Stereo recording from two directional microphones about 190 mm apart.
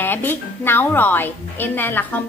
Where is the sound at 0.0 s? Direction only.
10° left (ahead or behind).